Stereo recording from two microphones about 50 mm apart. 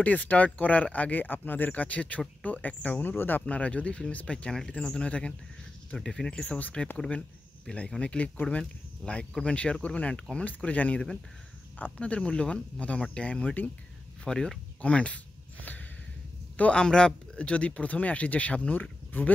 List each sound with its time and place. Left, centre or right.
0.0 s speech: left
7.7 s speech: left
14.2 s speech: centre
14.8 s speech: left
16.7 s speech: centre; by 19.3 s left